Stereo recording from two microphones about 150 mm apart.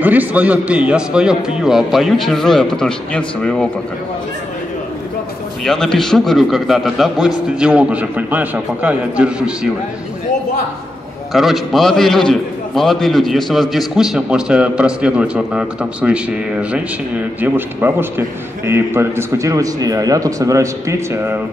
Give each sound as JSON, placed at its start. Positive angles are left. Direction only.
{"t": 0.0, "sound": "a man's voice", "side_deg": -10}
{"t": 5.6, "sound": "a man's voice", "side_deg": 5}
{"t": 11.3, "sound": "a man's voice", "side_deg": 0}
{"t": 17.4, "sound": "a man's voice", "side_deg": -15}